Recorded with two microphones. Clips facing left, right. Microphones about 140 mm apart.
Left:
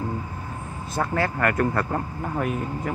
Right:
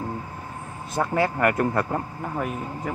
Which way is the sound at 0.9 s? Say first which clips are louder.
Right 2 dB; 20° right (ahead or behind).